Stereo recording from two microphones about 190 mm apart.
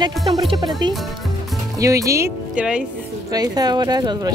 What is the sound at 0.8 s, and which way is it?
Speech, 25° right (ahead or behind).